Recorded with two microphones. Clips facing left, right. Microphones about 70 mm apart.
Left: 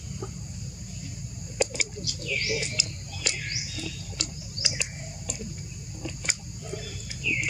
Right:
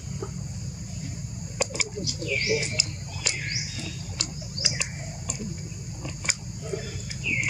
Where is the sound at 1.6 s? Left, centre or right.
Centre.